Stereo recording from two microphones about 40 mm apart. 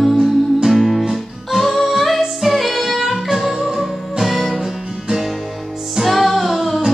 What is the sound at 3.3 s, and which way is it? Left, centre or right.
Music, centre.